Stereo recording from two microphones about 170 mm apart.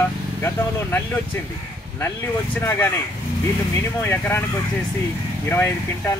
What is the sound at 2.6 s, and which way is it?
Speech, 15° left (ahead or behind).